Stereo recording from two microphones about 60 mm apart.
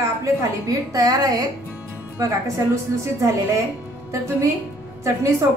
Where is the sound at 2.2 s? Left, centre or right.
Right.